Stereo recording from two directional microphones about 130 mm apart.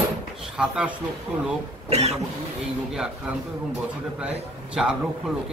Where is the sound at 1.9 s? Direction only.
55° right (ahead or behind).